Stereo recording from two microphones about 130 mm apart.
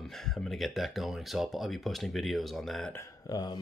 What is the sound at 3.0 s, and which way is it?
Speech, 30° left (ahead or behind).